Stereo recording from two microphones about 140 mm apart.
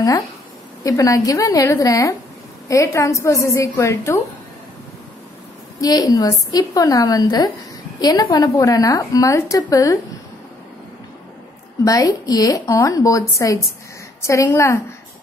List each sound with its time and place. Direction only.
0.8 s a woman's voice: 25° left (ahead or behind)
5.8 s a woman's voice: 25° left (ahead or behind)
11.8 s a woman's voice: 25° left (ahead or behind)